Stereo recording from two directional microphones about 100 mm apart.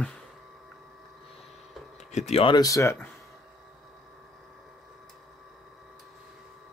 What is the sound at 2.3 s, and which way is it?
Speech, 80° left.